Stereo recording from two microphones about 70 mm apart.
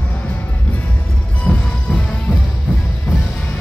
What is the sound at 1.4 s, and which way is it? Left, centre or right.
Music, centre.